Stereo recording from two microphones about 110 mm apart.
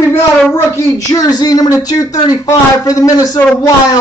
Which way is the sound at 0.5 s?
25° left (ahead or behind).